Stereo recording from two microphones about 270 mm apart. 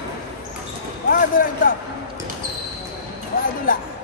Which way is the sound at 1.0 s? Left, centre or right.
Left.